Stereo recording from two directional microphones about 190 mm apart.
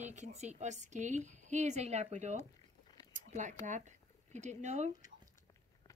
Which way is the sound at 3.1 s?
40° right (ahead or behind).